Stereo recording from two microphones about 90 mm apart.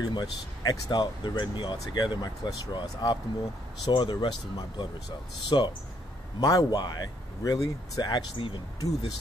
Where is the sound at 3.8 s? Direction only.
65° left (ahead or behind).